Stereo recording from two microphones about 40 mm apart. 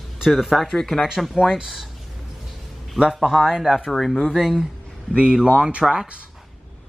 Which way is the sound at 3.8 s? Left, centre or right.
Centre.